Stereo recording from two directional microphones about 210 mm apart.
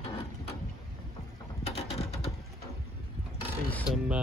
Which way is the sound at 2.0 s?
30° left (ahead or behind).